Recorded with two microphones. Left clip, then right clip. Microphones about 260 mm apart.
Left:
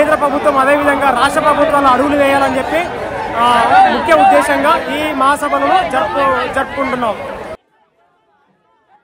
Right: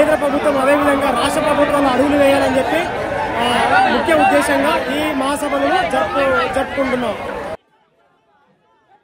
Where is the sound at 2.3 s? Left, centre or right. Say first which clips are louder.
Left 2 dB; left.